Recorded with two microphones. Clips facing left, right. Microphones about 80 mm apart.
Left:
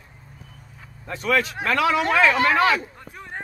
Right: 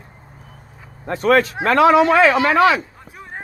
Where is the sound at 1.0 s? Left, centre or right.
Right.